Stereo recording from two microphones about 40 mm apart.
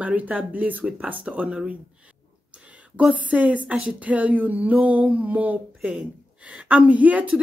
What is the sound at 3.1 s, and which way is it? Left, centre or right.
Speech, right.